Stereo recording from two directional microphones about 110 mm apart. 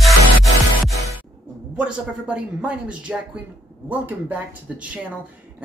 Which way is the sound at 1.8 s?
10° right (ahead or behind).